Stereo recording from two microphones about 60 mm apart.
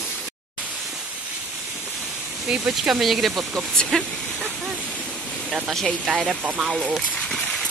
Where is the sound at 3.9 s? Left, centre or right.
Centre.